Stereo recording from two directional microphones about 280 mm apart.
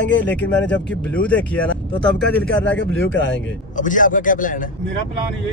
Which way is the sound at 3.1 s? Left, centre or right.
Left.